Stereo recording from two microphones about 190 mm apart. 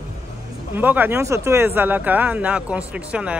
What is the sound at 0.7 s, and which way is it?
Speech, 10° right (ahead or behind).